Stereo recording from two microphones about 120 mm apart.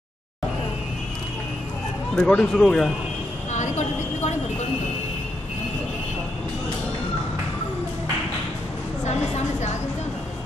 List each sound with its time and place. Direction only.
2.1 s speech: 5° left (ahead or behind)
3.5 s vehicle: 75° left (ahead or behind)
9.0 s a woman's voice: 70° left (ahead or behind)